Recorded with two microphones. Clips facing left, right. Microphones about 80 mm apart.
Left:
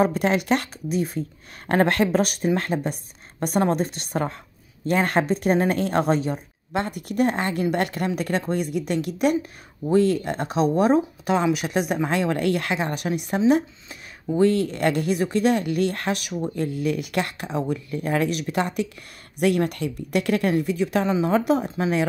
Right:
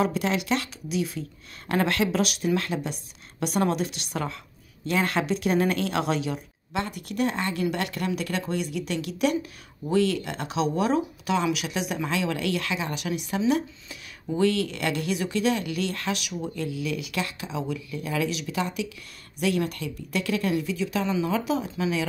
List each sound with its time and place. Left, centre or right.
0.0 s speech: left
21.1 s speech: left
21.4 s speech: left